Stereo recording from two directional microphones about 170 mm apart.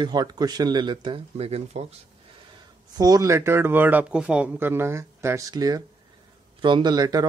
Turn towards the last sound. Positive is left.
turn(degrees=-20)  # may be behind; listen again after turning